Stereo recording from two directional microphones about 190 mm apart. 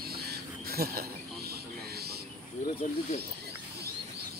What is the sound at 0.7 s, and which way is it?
Speech, 55° right (ahead or behind).